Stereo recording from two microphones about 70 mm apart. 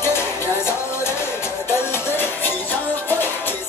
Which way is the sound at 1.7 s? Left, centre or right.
Left.